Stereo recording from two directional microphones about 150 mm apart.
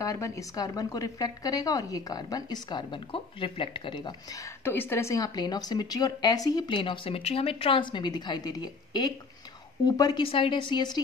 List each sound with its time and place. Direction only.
0.0 s a woman's voice: 20° left (ahead or behind)